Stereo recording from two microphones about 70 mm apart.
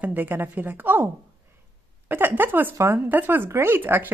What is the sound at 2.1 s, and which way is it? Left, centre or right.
Speech, right.